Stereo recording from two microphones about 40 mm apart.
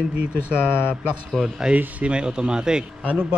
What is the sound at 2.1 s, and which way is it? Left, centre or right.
Speech, right.